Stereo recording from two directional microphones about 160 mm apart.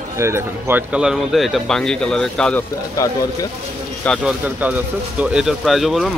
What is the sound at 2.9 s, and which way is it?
Speech, 20° left (ahead or behind).